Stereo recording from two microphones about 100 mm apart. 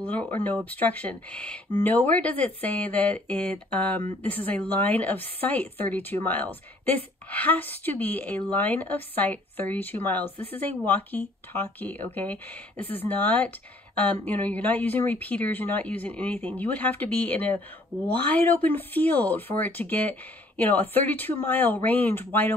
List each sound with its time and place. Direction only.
0.0 s a woman's voice: 15° left (ahead or behind)